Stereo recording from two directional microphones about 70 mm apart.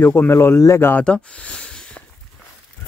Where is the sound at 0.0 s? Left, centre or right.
Left.